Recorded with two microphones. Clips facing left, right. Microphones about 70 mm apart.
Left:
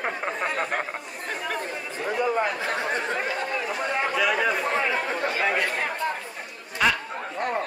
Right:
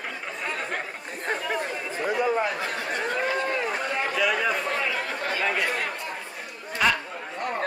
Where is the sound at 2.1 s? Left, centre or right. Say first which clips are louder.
Even; centre.